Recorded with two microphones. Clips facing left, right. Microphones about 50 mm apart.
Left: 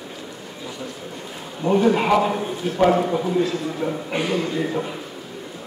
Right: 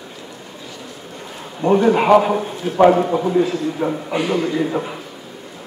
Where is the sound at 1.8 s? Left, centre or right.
Right.